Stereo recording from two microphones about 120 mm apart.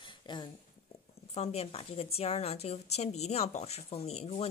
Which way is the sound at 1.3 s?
60° left (ahead or behind).